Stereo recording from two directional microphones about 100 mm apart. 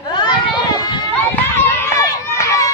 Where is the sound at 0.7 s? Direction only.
45° left (ahead or behind).